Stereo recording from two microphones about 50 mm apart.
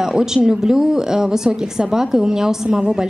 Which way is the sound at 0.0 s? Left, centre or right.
Centre.